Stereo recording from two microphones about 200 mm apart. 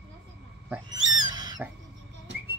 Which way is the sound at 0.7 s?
20° right (ahead or behind).